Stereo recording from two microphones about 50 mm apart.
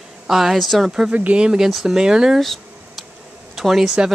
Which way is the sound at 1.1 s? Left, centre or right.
Right.